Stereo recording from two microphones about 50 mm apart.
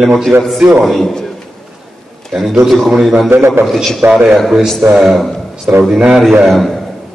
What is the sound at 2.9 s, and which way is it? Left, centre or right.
Speech, centre.